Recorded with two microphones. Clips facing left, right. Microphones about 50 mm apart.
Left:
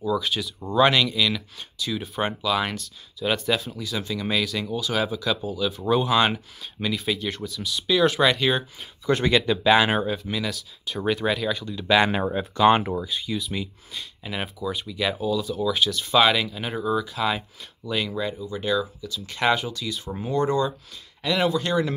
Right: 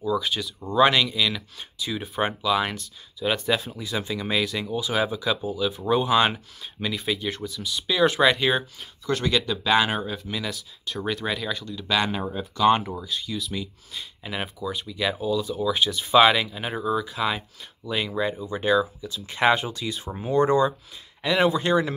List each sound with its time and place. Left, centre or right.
0.0 s speech: centre
8.7 s speech: centre
9.2 s speech: left
10.3 s speech: centre
11.6 s speech: centre
12.1 s speech: left
12.6 s speech: left
13.9 s speech: centre
21.5 s speech: right